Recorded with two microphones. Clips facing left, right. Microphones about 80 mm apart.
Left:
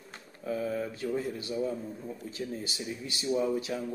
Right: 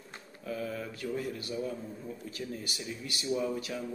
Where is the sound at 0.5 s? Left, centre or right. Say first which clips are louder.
Left 5 dB; left.